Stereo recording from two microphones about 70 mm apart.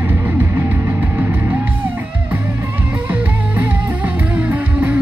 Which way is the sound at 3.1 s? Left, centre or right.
Right.